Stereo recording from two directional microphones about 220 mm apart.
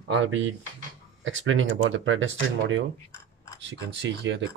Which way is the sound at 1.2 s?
65° right (ahead or behind).